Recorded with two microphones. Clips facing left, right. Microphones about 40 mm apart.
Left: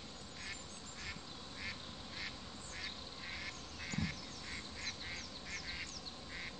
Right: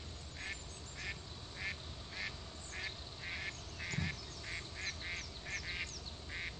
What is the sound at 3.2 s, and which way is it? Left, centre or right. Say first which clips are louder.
Duck: right 4 dB; right.